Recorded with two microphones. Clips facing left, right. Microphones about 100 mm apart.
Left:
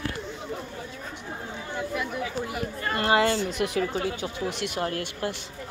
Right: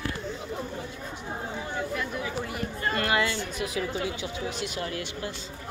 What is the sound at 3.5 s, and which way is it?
Speech, 65° left (ahead or behind).